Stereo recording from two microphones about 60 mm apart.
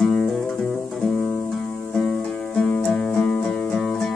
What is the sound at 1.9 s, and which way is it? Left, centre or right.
Music, centre.